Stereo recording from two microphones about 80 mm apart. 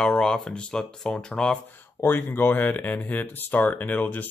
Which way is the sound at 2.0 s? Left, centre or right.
Left.